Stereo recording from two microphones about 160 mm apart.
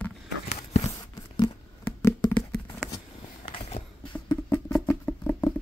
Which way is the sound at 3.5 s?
40° left (ahead or behind).